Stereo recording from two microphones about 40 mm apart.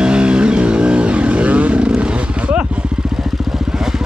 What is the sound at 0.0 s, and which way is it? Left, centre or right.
Vehicle, right.